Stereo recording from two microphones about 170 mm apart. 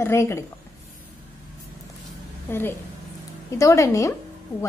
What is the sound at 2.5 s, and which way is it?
A woman's voice, 15° left (ahead or behind).